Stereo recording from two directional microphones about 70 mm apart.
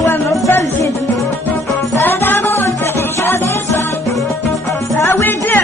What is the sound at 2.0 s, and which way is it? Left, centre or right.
Music, left.